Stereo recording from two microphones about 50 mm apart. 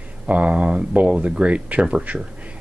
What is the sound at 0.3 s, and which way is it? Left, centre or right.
Speech, right.